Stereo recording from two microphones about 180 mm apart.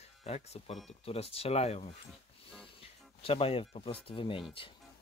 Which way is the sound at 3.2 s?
30° left (ahead or behind).